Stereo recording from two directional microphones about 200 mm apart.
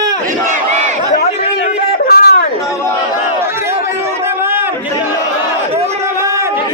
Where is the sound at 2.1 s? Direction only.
50° left (ahead or behind).